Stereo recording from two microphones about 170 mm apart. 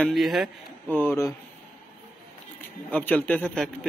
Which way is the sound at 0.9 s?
10° left (ahead or behind).